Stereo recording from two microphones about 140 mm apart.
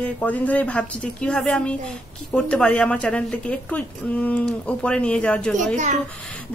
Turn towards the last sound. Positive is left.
turn(degrees=-55)  # may be behind; listen again after turning